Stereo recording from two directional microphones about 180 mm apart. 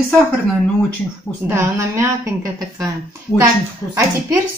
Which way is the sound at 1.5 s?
15° right (ahead or behind).